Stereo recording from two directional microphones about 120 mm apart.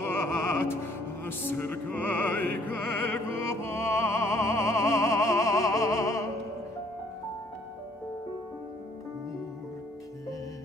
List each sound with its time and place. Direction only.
0.0 s music: 20° left (ahead or behind)